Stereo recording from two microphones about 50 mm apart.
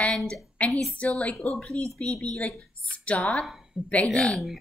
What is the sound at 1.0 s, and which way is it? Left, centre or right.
Speech, left.